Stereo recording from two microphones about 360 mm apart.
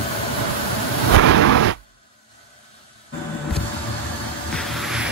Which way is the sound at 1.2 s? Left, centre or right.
Right.